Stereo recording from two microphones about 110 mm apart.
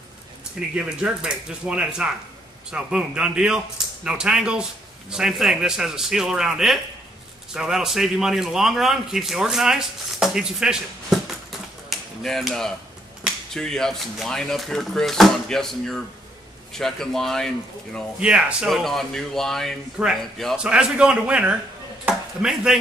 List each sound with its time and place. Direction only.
0.7 s a man's voice: 10° right (ahead or behind)
11.9 s finger snapping: centre (ahead or behind)
13.5 s a man's voice: 5° left (ahead or behind)
18.2 s a man's voice: 5° right (ahead or behind)